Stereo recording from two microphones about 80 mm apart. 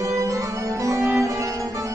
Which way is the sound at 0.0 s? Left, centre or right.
Right.